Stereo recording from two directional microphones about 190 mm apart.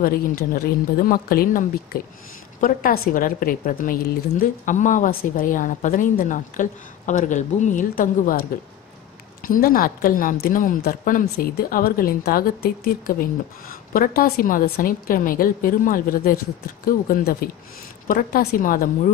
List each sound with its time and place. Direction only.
0.0 s speech: 50° left (ahead or behind)
9.6 s speech: 50° left (ahead or behind)